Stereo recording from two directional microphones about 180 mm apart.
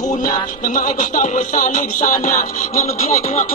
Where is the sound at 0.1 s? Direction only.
45° left (ahead or behind).